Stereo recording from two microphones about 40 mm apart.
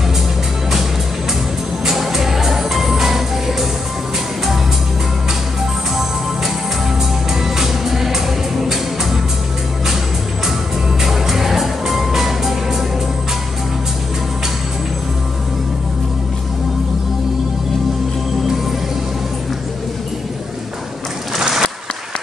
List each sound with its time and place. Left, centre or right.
1.9 s music: centre
7.3 s music: centre
11.0 s music: centre
21.4 s applause: centre